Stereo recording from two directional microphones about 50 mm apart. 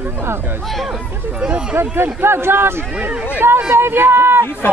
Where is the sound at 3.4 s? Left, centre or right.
Right.